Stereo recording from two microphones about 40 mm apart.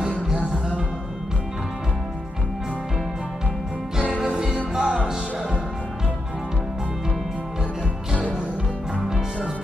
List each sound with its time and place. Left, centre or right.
4.3 s music: centre